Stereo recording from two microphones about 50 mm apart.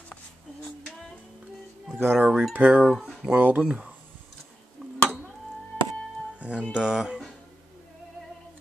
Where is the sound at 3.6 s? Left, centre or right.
Centre.